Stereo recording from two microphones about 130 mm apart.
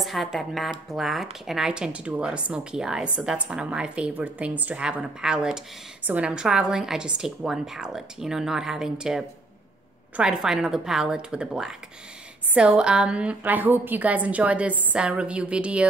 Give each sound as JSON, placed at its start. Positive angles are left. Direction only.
{"t": 0.0, "sound": "a woman's voice", "side_deg": 0}